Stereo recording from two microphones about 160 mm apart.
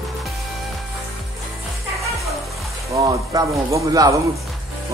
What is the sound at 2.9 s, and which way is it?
Speech, 20° right (ahead or behind).